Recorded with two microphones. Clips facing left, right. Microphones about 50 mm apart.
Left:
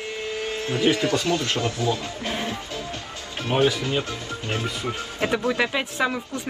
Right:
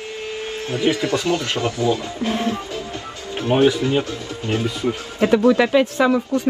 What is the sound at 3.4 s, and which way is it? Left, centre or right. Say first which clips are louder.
Speech: right 5 dB; right.